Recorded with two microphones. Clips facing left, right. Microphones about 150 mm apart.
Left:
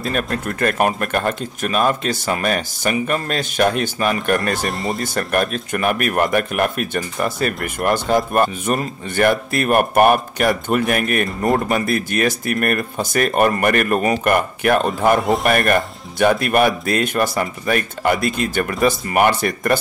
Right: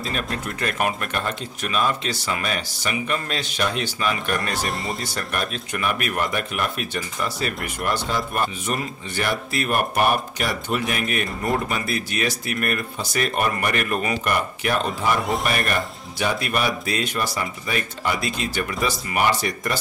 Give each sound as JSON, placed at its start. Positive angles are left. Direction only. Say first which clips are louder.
{"t": 0.0, "sound": "speech", "louder": "left 6 dB", "side_deg": 50}
{"t": 4.6, "sound": "speech", "louder": "left 5 dB", "side_deg": 0}
{"t": 5.0, "sound": "speech", "louder": "left 8 dB", "side_deg": 50}